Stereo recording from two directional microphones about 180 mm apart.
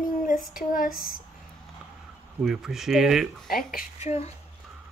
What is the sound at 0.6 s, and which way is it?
Speech, 50° left (ahead or behind).